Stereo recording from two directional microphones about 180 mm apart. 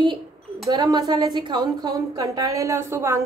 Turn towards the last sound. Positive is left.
turn(degrees=-15)  # may be behind; listen again after turning